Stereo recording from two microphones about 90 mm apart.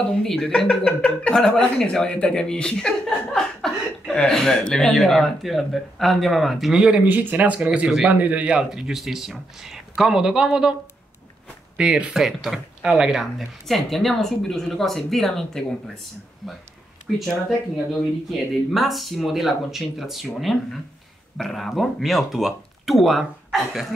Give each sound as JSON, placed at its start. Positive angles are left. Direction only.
{"t": 0.2, "sound": "speech", "side_deg": 5}
{"t": 7.1, "sound": "speech", "side_deg": -20}
{"t": 8.5, "sound": "speech", "side_deg": -5}
{"t": 17.1, "sound": "speech", "side_deg": 0}
{"t": 18.3, "sound": "speech", "side_deg": 0}